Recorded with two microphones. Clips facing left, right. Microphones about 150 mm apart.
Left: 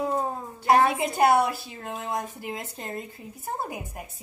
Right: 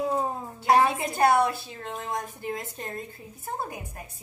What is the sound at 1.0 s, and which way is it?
A woman's voice, 20° left (ahead or behind).